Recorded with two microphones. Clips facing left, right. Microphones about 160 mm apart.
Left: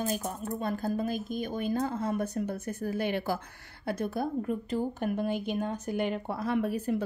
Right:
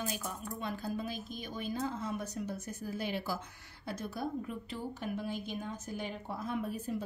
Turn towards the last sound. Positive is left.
turn(degrees=70)  # may be behind; listen again after turning